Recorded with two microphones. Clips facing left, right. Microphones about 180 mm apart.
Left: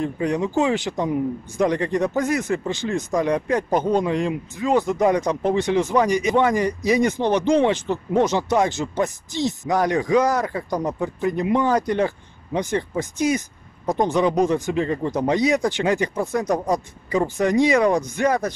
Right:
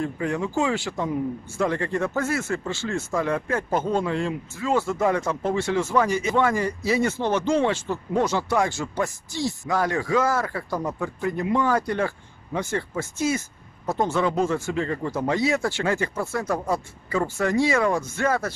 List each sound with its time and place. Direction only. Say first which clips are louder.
0.0 s speech: left 4 dB; 20° left (ahead or behind)